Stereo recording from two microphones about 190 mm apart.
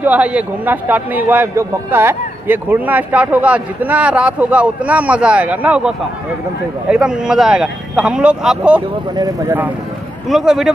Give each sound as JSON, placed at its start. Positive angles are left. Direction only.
{"t": 0.0, "sound": "a man's voice", "side_deg": -5}
{"t": 9.1, "sound": "a man's voice", "side_deg": -20}
{"t": 10.3, "sound": "speech", "side_deg": 0}